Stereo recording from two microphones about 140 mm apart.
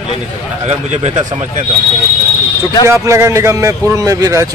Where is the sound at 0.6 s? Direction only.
45° right (ahead or behind).